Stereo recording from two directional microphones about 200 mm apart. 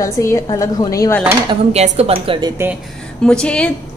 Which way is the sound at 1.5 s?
30° right (ahead or behind).